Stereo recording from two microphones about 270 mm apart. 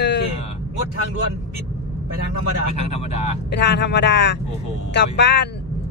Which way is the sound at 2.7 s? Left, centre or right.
Left.